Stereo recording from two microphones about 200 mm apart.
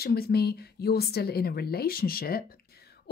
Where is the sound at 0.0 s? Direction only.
50° left (ahead or behind).